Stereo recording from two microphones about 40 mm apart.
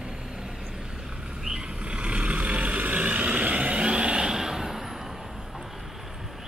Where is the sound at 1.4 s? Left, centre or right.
Centre.